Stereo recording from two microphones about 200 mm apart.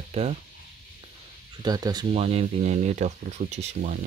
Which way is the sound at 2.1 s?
30° right (ahead or behind).